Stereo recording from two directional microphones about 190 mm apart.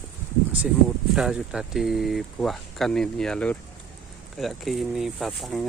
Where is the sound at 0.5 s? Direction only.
5° right (ahead or behind).